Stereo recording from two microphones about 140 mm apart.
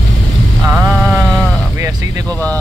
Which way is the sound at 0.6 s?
Centre (ahead or behind).